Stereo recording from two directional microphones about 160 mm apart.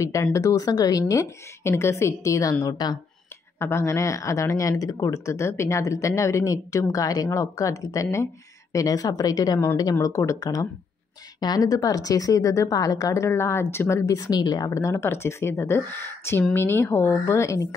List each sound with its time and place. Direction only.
0.0 s a woman's voice: 20° left (ahead or behind)